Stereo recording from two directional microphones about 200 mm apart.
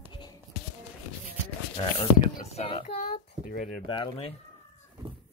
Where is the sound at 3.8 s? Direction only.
25° left (ahead or behind).